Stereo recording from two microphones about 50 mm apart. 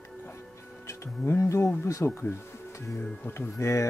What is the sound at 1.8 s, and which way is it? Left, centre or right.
Speech, left.